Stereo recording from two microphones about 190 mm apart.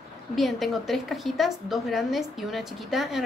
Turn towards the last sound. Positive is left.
turn(degrees=0)  # may be behind; listen again after turning